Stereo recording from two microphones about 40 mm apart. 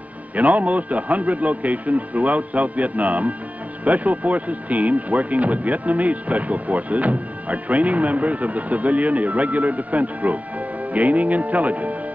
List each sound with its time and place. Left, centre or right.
0.4 s speech: right